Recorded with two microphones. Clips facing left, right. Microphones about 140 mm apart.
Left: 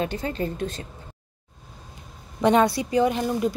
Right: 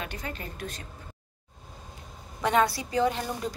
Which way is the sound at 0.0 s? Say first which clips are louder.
Left 10 dB; 30° left (ahead or behind).